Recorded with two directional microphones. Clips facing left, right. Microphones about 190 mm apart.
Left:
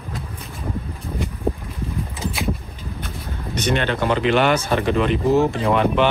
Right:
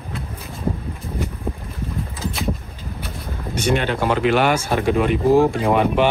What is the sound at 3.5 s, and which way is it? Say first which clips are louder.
Speech: right 1 dB; 10° right (ahead or behind).